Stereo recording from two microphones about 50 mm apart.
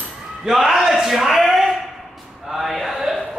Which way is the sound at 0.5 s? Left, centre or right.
Centre.